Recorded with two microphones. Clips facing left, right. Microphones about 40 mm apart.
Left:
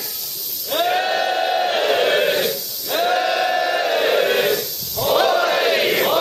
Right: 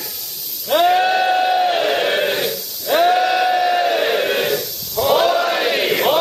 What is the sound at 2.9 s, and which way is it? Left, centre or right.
Crowd, centre.